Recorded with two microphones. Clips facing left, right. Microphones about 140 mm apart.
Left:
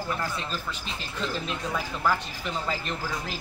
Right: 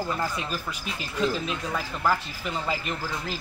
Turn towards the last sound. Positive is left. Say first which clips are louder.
# right 1 dB
turn(degrees=-5)  # may be behind; listen again after turning